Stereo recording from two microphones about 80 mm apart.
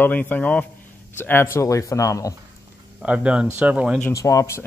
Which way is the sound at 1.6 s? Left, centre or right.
Left.